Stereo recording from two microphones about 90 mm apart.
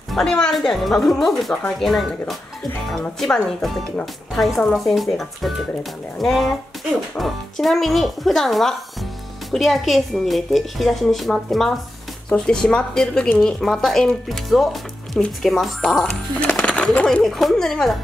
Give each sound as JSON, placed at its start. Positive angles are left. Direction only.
{"t": 0.1, "sound": "a woman's voice", "side_deg": 5}